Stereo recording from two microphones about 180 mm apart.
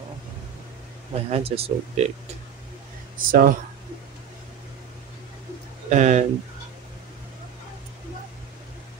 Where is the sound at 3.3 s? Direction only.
50° right (ahead or behind).